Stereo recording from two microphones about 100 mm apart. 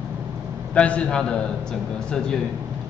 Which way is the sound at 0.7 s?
10° left (ahead or behind).